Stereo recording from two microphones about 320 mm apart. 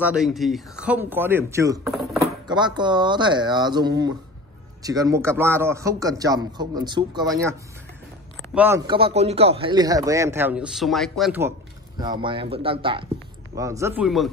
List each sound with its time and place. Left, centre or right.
0.0 s a man's voice: centre
8.5 s a man's voice: centre
12.0 s a man's voice: centre